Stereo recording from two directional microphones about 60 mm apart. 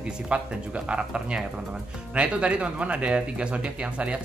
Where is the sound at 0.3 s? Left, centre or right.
Centre.